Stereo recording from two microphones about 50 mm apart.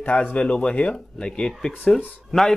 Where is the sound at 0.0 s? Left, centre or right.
Left.